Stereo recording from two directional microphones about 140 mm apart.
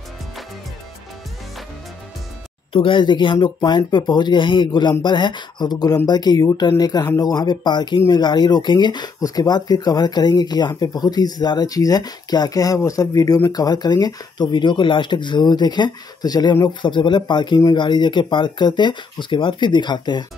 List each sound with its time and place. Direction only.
2.7 s speech: 35° left (ahead or behind)